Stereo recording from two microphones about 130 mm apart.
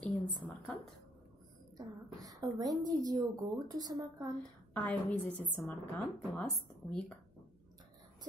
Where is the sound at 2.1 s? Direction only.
30° right (ahead or behind).